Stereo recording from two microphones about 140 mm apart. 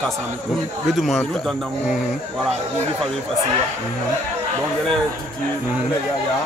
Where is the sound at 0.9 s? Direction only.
Centre (ahead or behind).